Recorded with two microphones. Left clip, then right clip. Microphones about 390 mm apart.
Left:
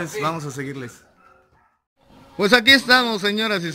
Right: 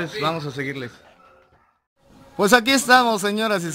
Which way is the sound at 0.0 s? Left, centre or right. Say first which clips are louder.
Right 1 dB; centre.